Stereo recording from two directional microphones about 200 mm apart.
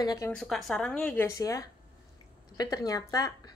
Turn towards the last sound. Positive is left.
turn(degrees=15)  # may be behind; listen again after turning